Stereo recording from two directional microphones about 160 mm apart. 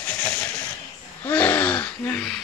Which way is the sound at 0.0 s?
10° left (ahead or behind).